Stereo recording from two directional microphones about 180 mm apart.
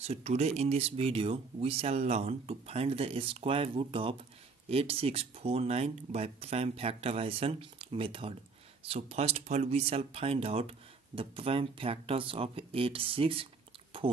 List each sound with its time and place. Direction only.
0.0 s speech: 35° right (ahead or behind)